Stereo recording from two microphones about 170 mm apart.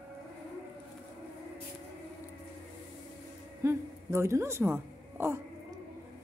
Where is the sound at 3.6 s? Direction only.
15° right (ahead or behind).